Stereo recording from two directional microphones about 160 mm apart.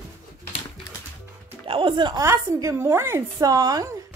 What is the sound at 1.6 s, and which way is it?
Speech, 35° right (ahead or behind).